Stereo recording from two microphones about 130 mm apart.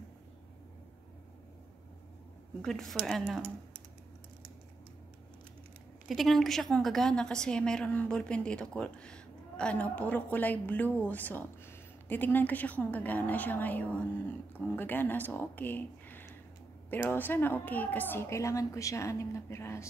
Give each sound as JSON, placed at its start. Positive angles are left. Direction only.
{"t": 2.6, "sound": "a woman's voice", "side_deg": 5}
{"t": 6.0, "sound": "a woman's voice", "side_deg": 0}